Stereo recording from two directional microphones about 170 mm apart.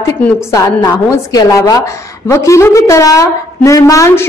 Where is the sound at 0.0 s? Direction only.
15° left (ahead or behind).